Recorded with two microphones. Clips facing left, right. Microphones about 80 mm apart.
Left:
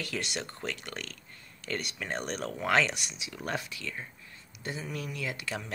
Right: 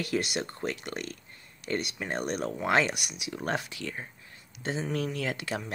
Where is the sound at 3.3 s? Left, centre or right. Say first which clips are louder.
Right 4 dB; right.